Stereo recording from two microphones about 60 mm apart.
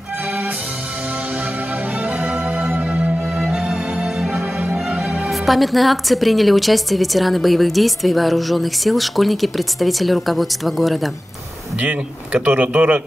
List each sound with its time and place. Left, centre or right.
2.0 s music: right
3.3 s music: centre
5.3 s a woman's voice: centre
11.8 s speech: right